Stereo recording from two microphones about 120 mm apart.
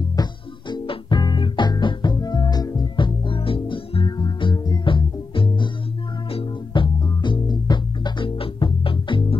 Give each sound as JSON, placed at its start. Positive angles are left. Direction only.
{"t": 0.1, "sound": "music", "side_deg": 35}